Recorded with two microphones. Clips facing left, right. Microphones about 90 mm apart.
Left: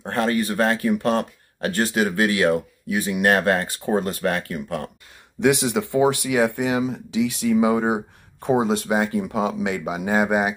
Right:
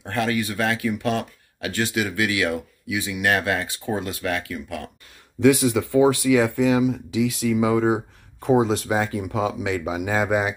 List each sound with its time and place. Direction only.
0.0 s speech: 40° left (ahead or behind)
5.4 s speech: 20° left (ahead or behind)
6.6 s speech: 30° left (ahead or behind)
8.9 s speech: 30° left (ahead or behind)